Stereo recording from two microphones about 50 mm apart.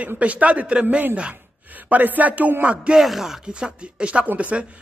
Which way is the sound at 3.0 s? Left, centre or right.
Centre.